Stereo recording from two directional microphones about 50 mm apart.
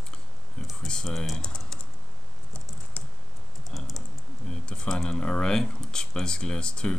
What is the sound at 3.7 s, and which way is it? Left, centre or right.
Typing, centre.